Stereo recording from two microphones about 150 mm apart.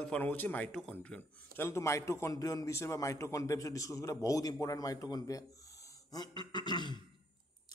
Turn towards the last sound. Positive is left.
turn(degrees=30)  # may be behind; listen again after turning